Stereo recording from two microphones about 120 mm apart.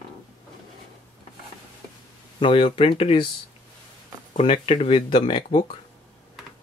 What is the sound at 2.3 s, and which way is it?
Speech, 45° left (ahead or behind).